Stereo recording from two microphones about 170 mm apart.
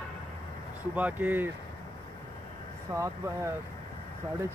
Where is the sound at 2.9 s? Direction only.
15° right (ahead or behind).